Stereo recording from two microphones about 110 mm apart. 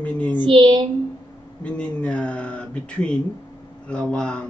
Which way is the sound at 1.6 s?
10° left (ahead or behind).